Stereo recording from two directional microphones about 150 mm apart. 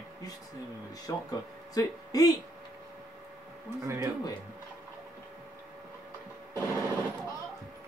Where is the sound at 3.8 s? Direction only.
20° right (ahead or behind).